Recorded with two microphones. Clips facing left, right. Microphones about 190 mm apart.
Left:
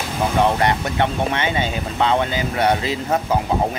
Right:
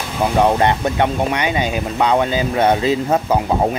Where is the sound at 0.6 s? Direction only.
20° right (ahead or behind).